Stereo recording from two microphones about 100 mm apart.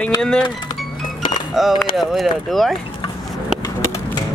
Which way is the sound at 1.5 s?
5° right (ahead or behind).